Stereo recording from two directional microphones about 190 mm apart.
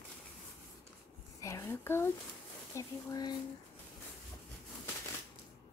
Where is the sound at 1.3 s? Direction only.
15° left (ahead or behind).